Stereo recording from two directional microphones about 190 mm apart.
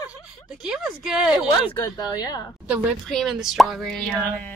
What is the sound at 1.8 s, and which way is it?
Speech, 20° left (ahead or behind).